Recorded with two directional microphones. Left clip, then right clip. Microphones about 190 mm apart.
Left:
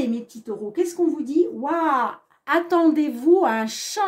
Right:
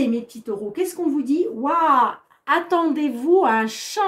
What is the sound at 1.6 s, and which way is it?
A woman's voice, 30° left (ahead or behind).